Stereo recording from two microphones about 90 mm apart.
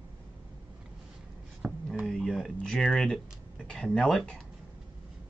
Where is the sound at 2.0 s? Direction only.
Centre (ahead or behind).